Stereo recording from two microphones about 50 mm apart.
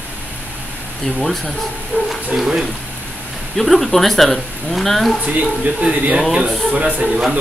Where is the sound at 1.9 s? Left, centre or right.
Right.